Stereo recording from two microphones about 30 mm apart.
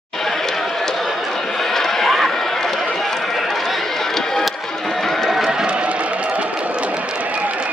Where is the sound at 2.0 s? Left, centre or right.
Centre.